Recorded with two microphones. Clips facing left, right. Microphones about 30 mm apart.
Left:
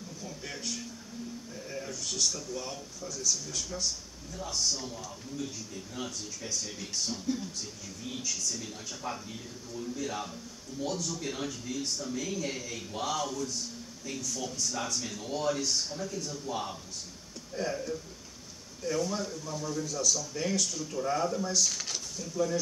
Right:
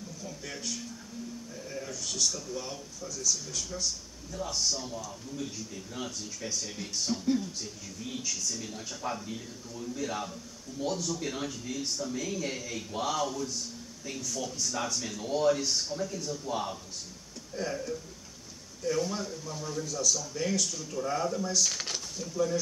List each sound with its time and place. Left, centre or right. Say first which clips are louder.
0.2 s a sound: even; centre
1.5 s speech: even; centre
4.3 s speech: right 1 dB; centre
21.6 s speech: right 1 dB; centre
22.2 s speech: right 1 dB; centre